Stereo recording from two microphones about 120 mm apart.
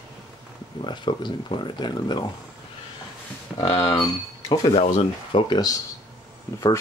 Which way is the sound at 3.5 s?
10° left (ahead or behind).